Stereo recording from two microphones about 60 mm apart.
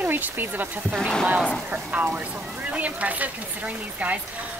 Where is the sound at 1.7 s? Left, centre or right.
Right.